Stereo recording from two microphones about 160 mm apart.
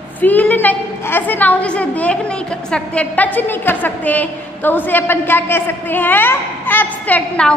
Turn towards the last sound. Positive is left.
turn(degrees=10)  # may be behind; listen again after turning